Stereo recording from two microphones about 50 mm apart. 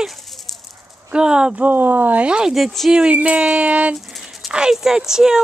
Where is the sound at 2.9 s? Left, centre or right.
Right.